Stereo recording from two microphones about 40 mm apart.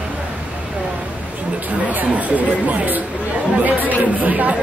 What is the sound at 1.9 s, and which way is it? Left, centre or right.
Speech, right.